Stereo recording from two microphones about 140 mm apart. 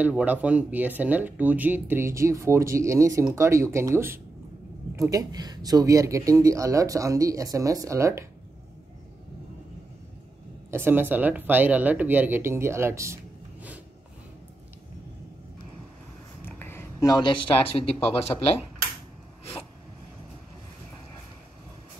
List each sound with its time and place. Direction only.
0.0 s speech: 10° right (ahead or behind)
10.7 s speech: 15° right (ahead or behind)
16.4 s a sound: 15° left (ahead or behind); by 17.7 s 35° left (ahead or behind)
18.3 s speech: 25° left (ahead or behind)